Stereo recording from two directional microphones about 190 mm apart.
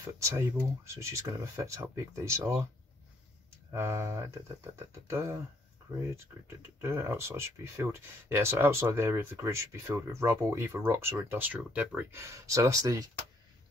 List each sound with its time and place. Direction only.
0.2 s speech: 15° right (ahead or behind)
3.7 s speech: 15° right (ahead or behind)
6.8 s speech: 15° right (ahead or behind)